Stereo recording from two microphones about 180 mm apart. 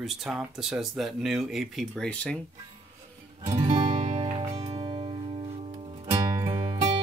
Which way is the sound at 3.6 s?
35° right (ahead or behind).